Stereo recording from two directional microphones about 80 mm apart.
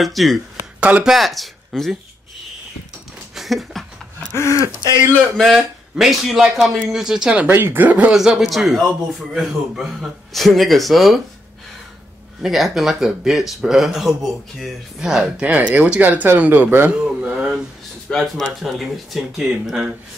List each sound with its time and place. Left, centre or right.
0.0 s speech: centre
0.7 s speech: centre
1.0 s speech: centre
3.3 s a sound: centre
4.4 s speech: left
5.4 s speech: centre
7.5 s speech: right
7.8 s speech: centre
8.1 s speech: centre
12.4 s speech: centre
18.1 s speech: centre